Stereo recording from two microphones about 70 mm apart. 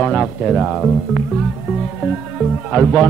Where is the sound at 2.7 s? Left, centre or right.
Centre.